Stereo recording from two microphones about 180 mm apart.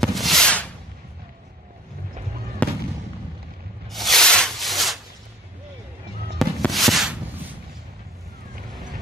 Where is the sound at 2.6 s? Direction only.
10° left (ahead or behind).